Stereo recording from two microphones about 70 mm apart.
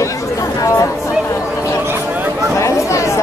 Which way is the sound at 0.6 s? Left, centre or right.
Left.